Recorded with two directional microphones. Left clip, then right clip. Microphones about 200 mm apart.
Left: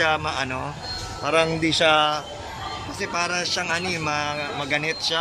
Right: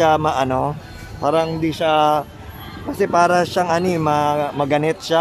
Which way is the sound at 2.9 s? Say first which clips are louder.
Right 12 dB; 35° right (ahead or behind).